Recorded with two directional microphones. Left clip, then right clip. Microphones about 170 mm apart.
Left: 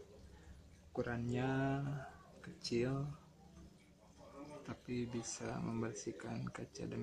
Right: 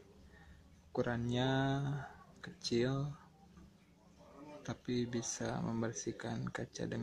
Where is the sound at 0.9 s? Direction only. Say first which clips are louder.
Right 4 dB; 20° right (ahead or behind).